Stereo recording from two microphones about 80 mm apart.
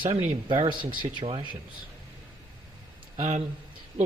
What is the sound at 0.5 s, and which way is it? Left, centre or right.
Speech, right.